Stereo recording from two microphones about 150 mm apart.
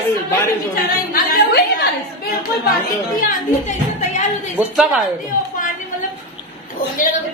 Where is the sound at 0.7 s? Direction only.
80° left.